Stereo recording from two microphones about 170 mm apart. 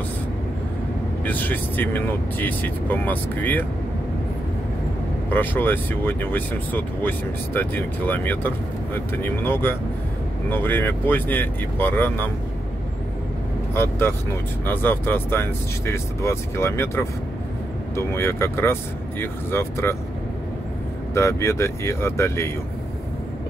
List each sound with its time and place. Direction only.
1.2 s speech: 10° left (ahead or behind)
5.3 s speech: 10° left (ahead or behind)
13.7 s speech: 15° left (ahead or behind)
21.1 s speech: 15° left (ahead or behind)